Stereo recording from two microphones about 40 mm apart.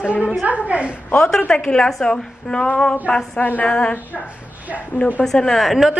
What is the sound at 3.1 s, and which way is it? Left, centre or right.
Speech, left.